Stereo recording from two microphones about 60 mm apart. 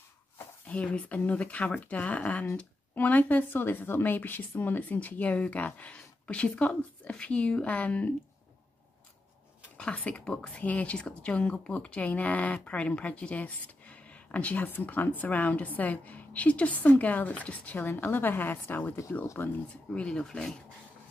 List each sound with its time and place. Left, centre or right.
0.7 s a woman's voice: left
9.8 s a woman's voice: centre
19.4 s a woman's voice: left